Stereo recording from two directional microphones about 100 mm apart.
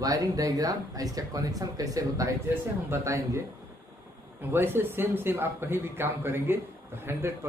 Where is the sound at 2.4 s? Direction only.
25° right (ahead or behind).